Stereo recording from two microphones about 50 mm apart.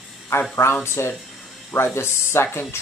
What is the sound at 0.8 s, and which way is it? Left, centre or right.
Speech, left.